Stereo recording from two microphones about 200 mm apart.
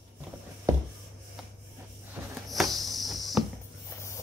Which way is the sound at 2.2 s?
5° right (ahead or behind).